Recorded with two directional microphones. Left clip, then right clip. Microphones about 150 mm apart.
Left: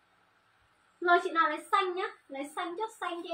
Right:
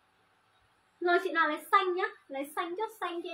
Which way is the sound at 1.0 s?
Centre (ahead or behind).